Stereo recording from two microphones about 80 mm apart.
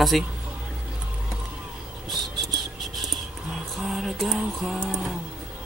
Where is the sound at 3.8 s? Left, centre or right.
Centre.